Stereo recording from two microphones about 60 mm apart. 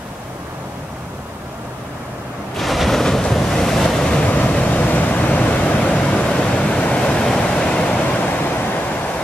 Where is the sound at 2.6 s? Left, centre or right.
Centre.